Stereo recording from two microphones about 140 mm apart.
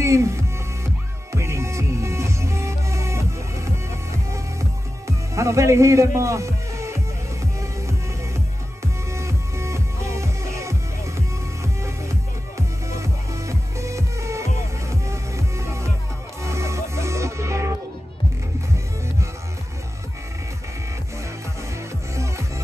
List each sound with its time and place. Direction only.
0.0 s speech: 20° right (ahead or behind)
1.3 s music: 20° right (ahead or behind)
9.1 s music: 20° right (ahead or behind)